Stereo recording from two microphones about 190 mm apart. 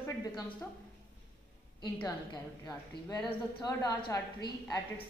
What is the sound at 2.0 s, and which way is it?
A woman's voice, 20° left (ahead or behind).